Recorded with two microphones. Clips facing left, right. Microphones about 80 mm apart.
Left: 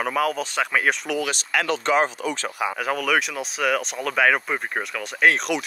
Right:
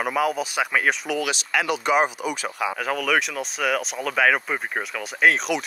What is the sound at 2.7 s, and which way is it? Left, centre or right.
Speech, centre.